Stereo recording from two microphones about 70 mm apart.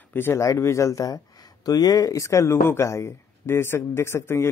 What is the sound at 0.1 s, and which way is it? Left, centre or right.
Speech, left.